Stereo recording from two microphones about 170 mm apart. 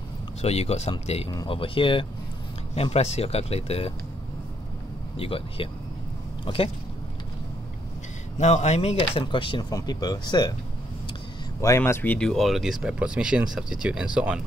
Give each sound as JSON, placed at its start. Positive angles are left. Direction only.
{"t": 0.4, "sound": "speech", "side_deg": 40}
{"t": 1.3, "sound": "speech", "side_deg": 25}
{"t": 5.1, "sound": "speech", "side_deg": 35}
{"t": 8.4, "sound": "speech", "side_deg": 40}
{"t": 11.6, "sound": "speech", "side_deg": 15}